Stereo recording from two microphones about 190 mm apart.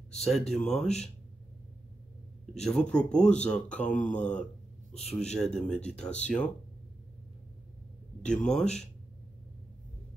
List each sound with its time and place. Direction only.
0.2 s speech: 5° left (ahead or behind)
2.6 s speech: 5° left (ahead or behind)
4.9 s a man's voice: 35° left (ahead or behind)
5.4 s speech: 5° left (ahead or behind)
8.3 s speech: 5° left (ahead or behind)